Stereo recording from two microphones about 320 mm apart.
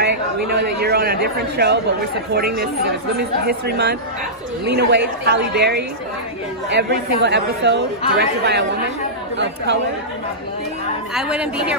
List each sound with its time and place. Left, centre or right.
0.0 s a sound: right
2.3 s speech: right
11.1 s a woman's voice: centre